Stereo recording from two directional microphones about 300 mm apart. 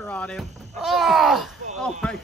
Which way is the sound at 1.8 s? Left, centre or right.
Centre.